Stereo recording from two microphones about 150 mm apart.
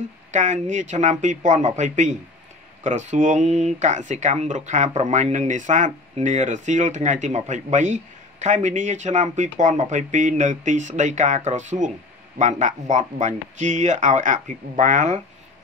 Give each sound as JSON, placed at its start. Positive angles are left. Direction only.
{"t": 0.3, "sound": "speech", "side_deg": -55}